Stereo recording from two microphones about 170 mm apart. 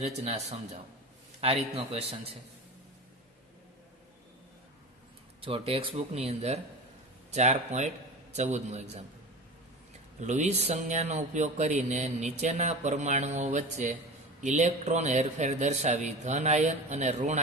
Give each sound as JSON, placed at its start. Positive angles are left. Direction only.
{"t": 0.0, "sound": "speech", "side_deg": -40}
{"t": 5.4, "sound": "a man's voice", "side_deg": -35}
{"t": 10.2, "sound": "speech", "side_deg": -45}